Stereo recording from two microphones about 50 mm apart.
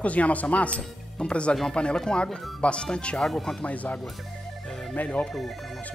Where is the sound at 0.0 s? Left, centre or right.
Left.